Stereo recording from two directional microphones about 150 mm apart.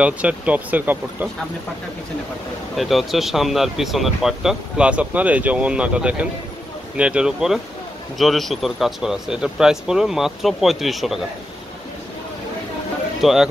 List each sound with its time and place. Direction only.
0.0 s speech: 10° right (ahead or behind)
2.7 s speech: centre (ahead or behind)
13.2 s speech: centre (ahead or behind)